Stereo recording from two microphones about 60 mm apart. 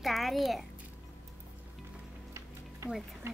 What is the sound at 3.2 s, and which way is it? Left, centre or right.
Speech, right.